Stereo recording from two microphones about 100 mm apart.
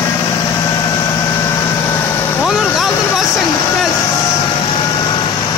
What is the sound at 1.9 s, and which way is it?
Vehicle, 25° left (ahead or behind).